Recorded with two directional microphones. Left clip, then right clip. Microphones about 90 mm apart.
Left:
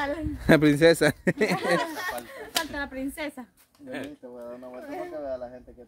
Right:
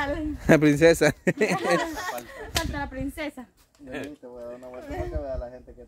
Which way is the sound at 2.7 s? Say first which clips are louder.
Even; 40° left (ahead or behind).